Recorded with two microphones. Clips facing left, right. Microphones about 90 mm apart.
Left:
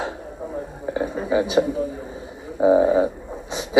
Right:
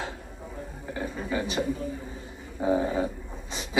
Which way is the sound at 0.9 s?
20° left (ahead or behind).